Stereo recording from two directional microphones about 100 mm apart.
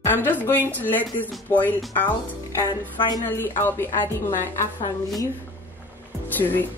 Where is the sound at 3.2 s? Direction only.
20° left (ahead or behind).